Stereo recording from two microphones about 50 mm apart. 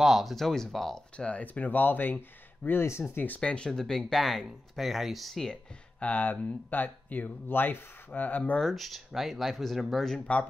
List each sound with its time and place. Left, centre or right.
0.0 s speech: centre
0.9 s speech: left
2.8 s speech: left
3.3 s speech: centre
3.7 s speech: centre
5.9 s speech: left
8.5 s speech: centre